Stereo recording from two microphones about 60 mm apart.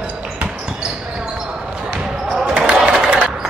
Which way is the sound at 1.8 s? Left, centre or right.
Centre.